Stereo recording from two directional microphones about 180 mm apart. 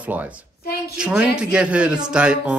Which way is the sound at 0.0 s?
10° right (ahead or behind).